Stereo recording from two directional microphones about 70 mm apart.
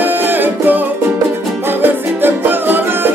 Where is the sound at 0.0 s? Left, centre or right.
Right.